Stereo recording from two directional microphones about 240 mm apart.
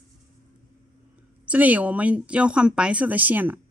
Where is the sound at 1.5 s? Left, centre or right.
Centre.